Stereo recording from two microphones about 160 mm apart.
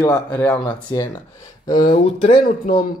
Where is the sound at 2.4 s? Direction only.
65° left (ahead or behind).